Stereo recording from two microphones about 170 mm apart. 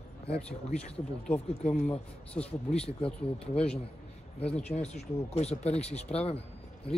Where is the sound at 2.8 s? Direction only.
35° left (ahead or behind).